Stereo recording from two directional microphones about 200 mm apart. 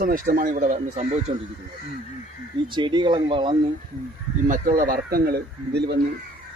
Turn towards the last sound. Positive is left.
turn(degrees=-50)  # may be behind; listen again after turning